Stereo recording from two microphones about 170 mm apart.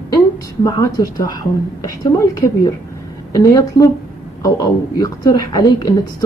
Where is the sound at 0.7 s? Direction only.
20° left (ahead or behind).